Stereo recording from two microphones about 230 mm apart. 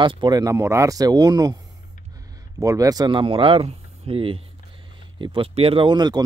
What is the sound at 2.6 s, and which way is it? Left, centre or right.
Speech, centre.